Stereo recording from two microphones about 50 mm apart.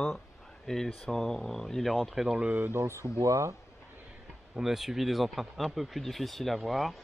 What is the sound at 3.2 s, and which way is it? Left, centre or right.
Speech, right.